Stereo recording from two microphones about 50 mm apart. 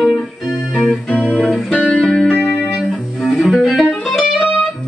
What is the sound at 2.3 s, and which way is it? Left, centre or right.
Music, centre.